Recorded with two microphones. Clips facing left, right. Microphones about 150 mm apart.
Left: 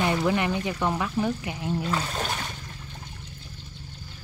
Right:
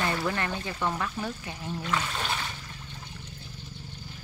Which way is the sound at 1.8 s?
35° left (ahead or behind).